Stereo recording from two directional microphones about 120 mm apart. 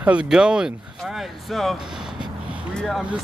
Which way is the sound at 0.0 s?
10° right (ahead or behind).